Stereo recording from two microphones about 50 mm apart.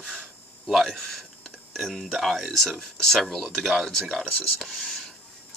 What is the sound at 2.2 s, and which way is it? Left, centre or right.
Speech, centre.